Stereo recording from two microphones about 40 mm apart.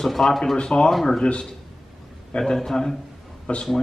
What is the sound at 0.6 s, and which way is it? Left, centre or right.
Speech, centre.